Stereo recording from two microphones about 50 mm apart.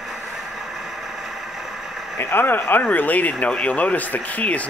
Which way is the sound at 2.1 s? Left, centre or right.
Left.